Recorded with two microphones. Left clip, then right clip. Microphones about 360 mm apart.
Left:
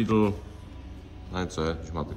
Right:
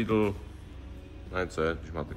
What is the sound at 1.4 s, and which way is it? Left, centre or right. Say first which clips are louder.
Speech: right 1 dB; centre.